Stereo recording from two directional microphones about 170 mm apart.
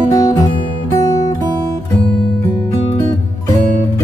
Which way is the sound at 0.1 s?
20° left (ahead or behind).